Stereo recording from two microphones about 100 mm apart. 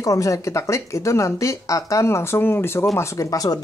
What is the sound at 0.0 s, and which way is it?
Speech, 30° left (ahead or behind).